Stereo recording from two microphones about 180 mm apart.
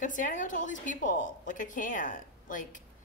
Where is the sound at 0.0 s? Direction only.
45° left (ahead or behind).